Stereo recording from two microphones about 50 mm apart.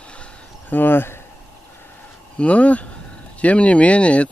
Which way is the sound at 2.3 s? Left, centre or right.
Left.